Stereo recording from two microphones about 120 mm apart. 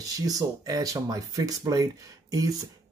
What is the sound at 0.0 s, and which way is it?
Speech, 30° right (ahead or behind).